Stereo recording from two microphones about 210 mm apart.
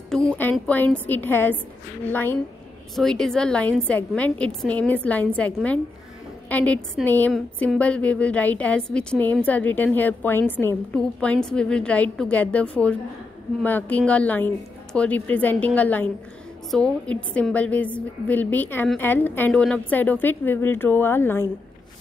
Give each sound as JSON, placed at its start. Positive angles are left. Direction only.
{"t": 0.1, "sound": "a woman's voice", "side_deg": 5}